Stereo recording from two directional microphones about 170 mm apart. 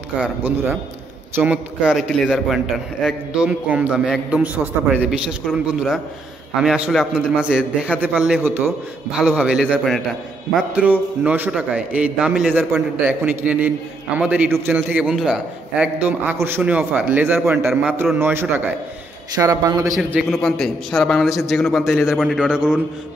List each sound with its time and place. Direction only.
0.2 s a man's voice: 10° right (ahead or behind)
20.0 s a man's voice: 5° right (ahead or behind)